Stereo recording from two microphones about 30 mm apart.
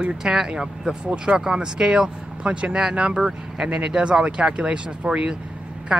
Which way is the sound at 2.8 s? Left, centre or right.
Right.